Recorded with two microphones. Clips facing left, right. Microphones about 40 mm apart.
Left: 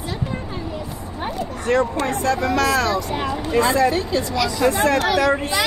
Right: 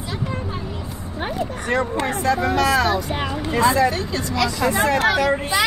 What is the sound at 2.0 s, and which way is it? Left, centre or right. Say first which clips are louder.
Speech: even; centre.